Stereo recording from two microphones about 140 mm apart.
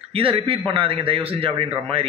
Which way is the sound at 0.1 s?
40° right (ahead or behind).